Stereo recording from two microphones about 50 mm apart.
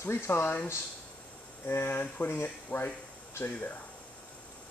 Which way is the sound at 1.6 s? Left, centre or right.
Left.